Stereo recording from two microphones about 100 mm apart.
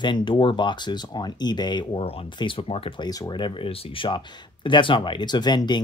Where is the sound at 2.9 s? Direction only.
40° left (ahead or behind).